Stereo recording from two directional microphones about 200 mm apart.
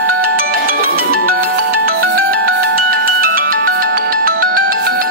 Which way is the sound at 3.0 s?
45° right (ahead or behind).